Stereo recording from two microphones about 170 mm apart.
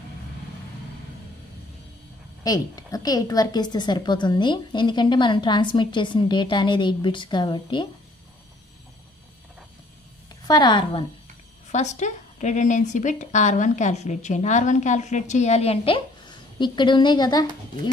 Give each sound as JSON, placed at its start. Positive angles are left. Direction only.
{"t": 2.4, "sound": "a woman's voice", "side_deg": 20}
{"t": 10.4, "sound": "a woman's voice", "side_deg": 25}
{"t": 11.7, "sound": "speech", "side_deg": 45}